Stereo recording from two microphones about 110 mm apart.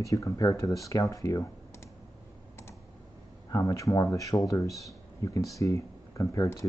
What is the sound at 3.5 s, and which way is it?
Speech, 30° left (ahead or behind).